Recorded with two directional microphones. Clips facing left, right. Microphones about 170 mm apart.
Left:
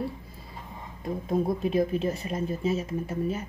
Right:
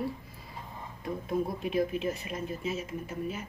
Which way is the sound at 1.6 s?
35° left (ahead or behind).